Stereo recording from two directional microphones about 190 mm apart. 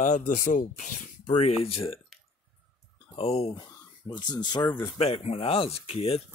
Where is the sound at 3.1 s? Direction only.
30° left (ahead or behind).